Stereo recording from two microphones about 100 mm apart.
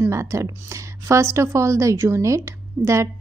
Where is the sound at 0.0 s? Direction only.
25° right (ahead or behind).